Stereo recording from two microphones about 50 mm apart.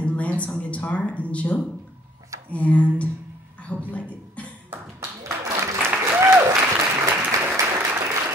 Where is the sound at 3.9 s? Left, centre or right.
Left.